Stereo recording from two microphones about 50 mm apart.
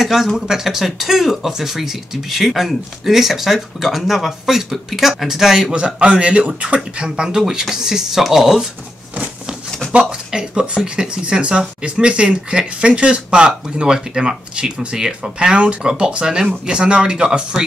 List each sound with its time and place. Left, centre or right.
0.0 s speech: centre
9.9 s speech: centre